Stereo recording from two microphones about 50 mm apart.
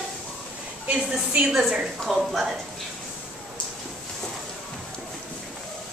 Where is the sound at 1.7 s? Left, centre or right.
Centre.